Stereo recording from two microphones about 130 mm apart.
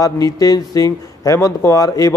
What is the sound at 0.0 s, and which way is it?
Speech, 30° left (ahead or behind).